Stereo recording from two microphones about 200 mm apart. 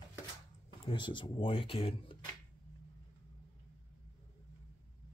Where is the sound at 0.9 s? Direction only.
25° left (ahead or behind).